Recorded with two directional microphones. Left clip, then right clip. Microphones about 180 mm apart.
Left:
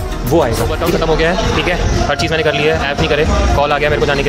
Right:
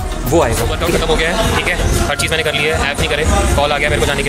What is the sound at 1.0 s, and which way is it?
Speech, 30° left (ahead or behind).